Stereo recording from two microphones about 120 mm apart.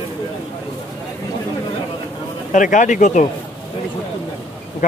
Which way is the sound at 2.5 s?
90° left.